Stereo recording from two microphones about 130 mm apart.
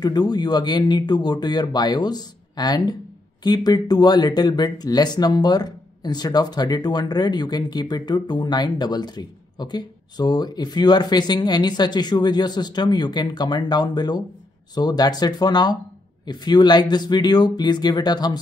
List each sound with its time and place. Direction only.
0.3 s speech: 30° left (ahead or behind)